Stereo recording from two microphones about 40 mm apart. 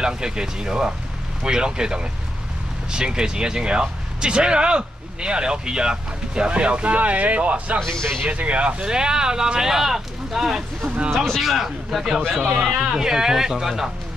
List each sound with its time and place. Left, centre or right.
0.0 s speech: centre
7.8 s speech: centre
8.3 s speech: right
8.8 s speech: centre